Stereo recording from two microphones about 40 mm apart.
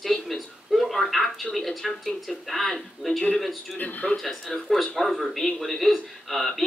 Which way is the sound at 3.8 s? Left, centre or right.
Left.